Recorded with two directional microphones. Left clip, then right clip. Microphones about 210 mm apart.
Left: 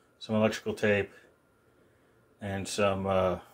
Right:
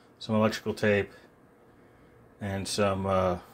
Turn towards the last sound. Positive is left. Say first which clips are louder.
# right 1 dB
turn(degrees=0)  # may be behind; listen again after turning